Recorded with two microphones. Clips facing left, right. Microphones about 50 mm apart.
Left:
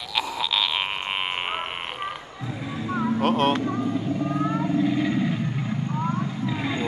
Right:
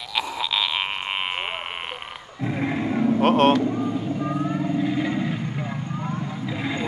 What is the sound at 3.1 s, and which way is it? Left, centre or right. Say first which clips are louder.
Speech: right 4 dB; right.